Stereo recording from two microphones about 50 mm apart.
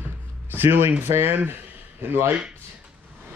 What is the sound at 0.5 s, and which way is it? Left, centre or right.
Speech, right.